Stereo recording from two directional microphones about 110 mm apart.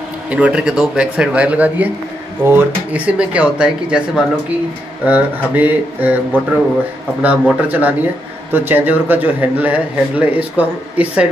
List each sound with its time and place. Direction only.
0.3 s a man's voice: 10° right (ahead or behind)
7.2 s a man's voice: 15° right (ahead or behind)